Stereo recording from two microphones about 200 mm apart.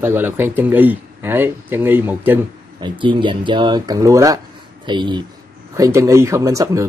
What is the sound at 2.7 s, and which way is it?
Speech, 25° right (ahead or behind).